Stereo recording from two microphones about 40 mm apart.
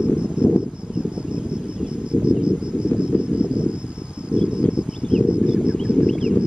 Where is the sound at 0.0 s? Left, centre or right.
Right.